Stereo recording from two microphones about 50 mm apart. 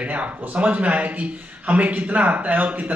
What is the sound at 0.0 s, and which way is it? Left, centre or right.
A man's voice, right.